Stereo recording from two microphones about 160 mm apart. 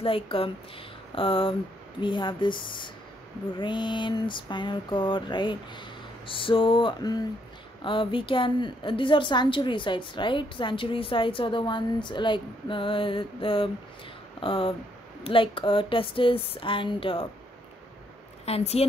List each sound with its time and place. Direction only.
0.0 s a woman's voice: 35° left (ahead or behind)
3.5 s a sound: 30° left (ahead or behind)
7.8 s a woman's voice: 30° left (ahead or behind)
18.4 s a woman's voice: 40° left (ahead or behind)